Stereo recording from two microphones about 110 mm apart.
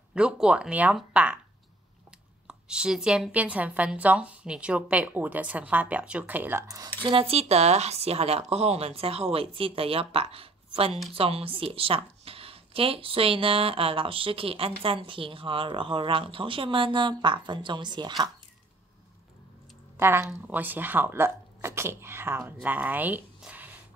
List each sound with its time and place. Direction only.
0.1 s a woman's voice: 10° right (ahead or behind)
2.4 s a woman's voice: 10° right (ahead or behind)
7.0 s speech: 55° right (ahead or behind)
20.0 s a woman's voice: 20° right (ahead or behind)